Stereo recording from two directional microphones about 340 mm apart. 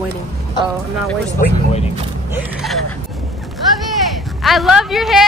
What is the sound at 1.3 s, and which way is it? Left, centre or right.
Speech, centre.